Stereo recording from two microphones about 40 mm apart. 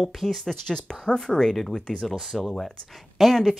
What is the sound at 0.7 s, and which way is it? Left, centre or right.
A woman's voice, centre.